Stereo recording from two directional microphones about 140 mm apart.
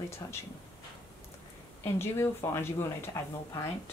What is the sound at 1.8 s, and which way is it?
Speech, 15° left (ahead or behind).